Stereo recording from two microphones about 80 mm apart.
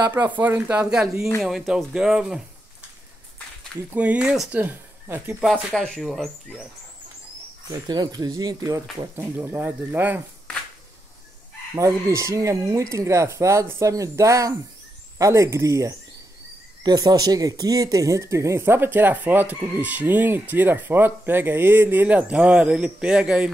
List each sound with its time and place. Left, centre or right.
0.4 s speech: right
1.4 s speech: centre
3.9 s speech: centre
4.6 s speech: right
5.8 s speech: centre
7.7 s speech: right
9.1 s speech: right
11.7 s speech: right
16.8 s speech: right; by 23.5 s centre